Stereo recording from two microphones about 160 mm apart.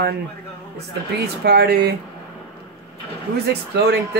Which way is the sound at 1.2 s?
90° right.